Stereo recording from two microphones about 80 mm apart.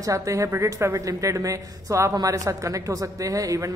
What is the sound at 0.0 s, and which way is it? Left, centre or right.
A woman's voice, right.